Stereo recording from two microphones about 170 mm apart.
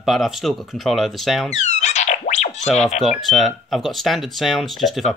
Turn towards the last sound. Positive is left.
turn(degrees=0)  # may be behind; listen again after turning